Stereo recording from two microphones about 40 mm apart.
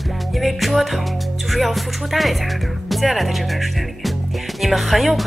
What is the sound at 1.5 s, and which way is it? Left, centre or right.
Speech, centre.